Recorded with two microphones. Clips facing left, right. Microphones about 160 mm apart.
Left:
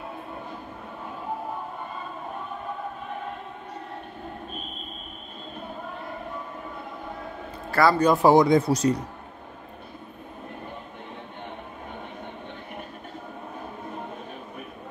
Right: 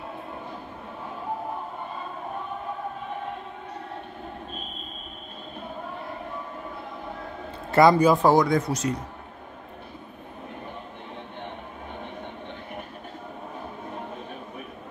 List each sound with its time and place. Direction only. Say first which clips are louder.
7.7 s a man's voice: right 4 dB; 20° right (ahead or behind)
8.2 s speech: left 3 dB; 20° left (ahead or behind); by 8.9 s 35° left (ahead or behind)